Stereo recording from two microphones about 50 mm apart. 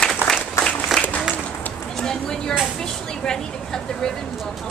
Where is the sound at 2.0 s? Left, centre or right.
Centre.